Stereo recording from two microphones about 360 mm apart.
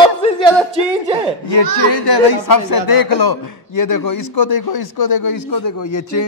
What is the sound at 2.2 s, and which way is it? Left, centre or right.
A man's voice, left.